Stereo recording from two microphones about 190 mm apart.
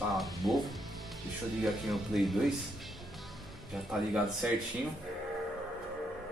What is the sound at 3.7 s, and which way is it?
Speech, centre (ahead or behind).